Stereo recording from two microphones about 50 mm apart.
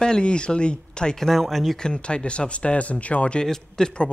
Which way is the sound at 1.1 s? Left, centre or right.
Centre.